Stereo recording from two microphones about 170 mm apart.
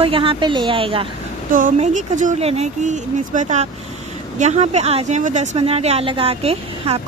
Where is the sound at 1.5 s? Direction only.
50° right (ahead or behind).